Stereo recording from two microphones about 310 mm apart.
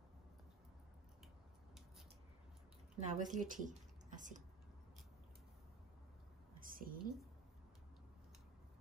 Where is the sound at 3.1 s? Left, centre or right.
Right.